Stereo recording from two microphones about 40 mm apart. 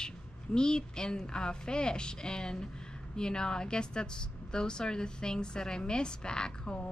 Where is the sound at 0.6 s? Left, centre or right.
Centre.